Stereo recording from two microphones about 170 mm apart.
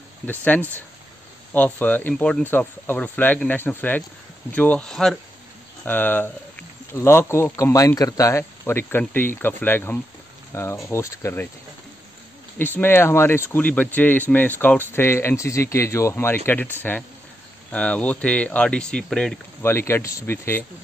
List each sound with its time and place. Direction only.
0.3 s speech: 10° left (ahead or behind)
12.5 s speech: 10° left (ahead or behind)